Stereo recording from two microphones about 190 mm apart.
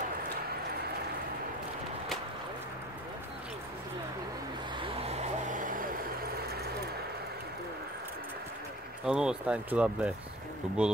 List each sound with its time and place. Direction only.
5.0 s vehicle: 35° right (ahead or behind)
9.0 s speech: 5° right (ahead or behind)